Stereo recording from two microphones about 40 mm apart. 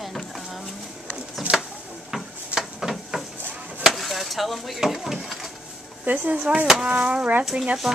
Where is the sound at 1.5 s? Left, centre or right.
Right.